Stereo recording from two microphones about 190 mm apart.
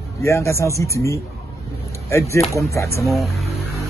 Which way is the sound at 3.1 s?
Centre (ahead or behind).